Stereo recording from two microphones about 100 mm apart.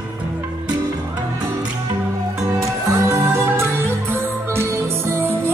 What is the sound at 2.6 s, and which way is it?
Music, 30° right (ahead or behind).